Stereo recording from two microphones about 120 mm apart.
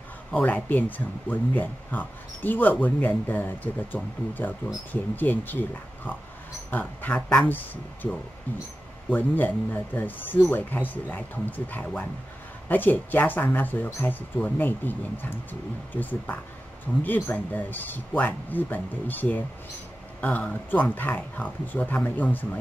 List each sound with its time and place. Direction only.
0.3 s speech: 10° left (ahead or behind)